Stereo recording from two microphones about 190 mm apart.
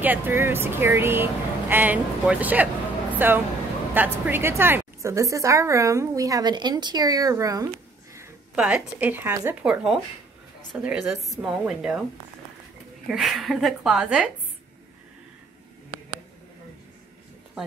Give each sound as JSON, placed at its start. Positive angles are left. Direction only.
{"t": 0.0, "sound": "a woman's voice", "side_deg": -10}
{"t": 8.5, "sound": "a woman's voice", "side_deg": -5}
{"t": 13.1, "sound": "a woman's voice", "side_deg": 0}